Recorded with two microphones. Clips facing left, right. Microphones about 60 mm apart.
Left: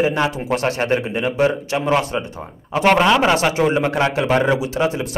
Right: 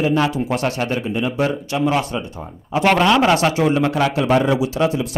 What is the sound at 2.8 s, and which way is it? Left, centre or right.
Speech, centre.